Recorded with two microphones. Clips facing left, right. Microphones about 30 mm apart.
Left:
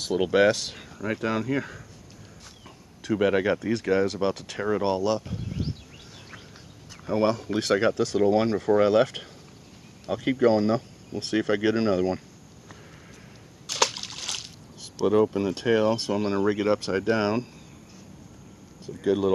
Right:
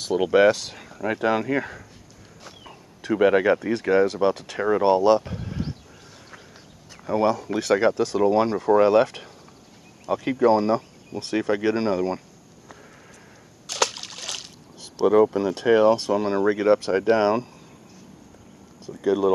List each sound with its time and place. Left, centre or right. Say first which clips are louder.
0.0 s speech: right 3 dB; centre
0.8 s speech: right 6 dB; centre
7.1 s speech: right 2 dB; centre
7.8 s speech: right 2 dB; centre
13.7 s a sound: right 1 dB; centre
15.0 s speech: right 4 dB; centre
18.9 s speech: right 3 dB; centre